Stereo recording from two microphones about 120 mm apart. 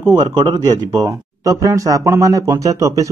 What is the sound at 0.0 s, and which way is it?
A man's voice, 35° right (ahead or behind).